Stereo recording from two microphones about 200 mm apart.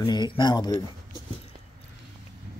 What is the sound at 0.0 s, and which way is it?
Speech, 20° left (ahead or behind).